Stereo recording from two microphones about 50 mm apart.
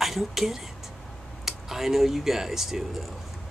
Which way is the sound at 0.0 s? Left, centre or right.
Centre.